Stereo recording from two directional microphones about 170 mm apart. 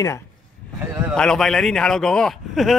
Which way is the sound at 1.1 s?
5° left (ahead or behind).